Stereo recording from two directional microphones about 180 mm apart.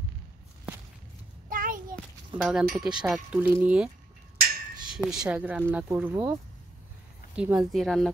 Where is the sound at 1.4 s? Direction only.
50° right (ahead or behind).